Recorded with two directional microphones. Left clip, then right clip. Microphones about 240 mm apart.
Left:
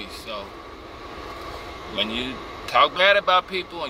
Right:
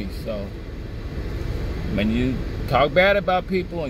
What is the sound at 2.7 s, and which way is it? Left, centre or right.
A man's voice, left.